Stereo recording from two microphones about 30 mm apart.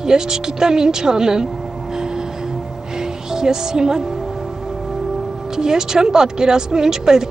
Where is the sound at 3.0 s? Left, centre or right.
Right.